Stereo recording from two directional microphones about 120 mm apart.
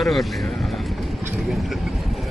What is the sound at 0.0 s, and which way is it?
Speech, centre (ahead or behind).